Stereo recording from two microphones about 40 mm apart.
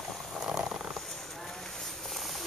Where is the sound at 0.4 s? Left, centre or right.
Centre.